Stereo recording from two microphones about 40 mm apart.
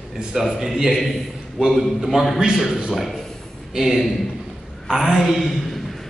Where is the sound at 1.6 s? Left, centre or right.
Right.